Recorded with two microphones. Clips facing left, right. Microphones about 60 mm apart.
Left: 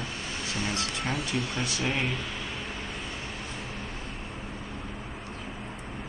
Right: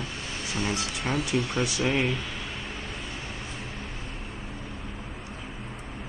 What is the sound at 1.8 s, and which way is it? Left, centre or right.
Speech, centre.